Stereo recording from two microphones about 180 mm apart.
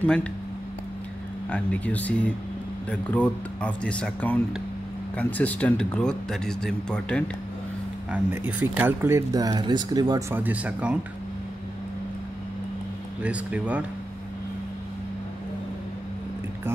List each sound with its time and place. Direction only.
0.0 s speech: 5° left (ahead or behind)
1.5 s speech: 10° left (ahead or behind)
8.1 s speech: 10° right (ahead or behind)
10.3 s speech: 10° right (ahead or behind)
13.2 s speech: 5° right (ahead or behind)